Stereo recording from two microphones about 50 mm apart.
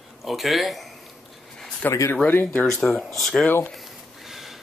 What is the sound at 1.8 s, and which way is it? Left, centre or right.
Speech, left.